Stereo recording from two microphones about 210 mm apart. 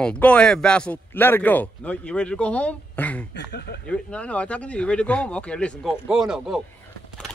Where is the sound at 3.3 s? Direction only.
50° left (ahead or behind).